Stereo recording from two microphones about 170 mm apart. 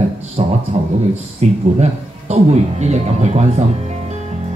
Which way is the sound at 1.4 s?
40° right (ahead or behind).